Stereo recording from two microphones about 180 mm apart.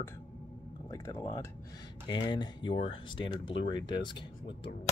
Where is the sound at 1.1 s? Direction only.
30° left (ahead or behind).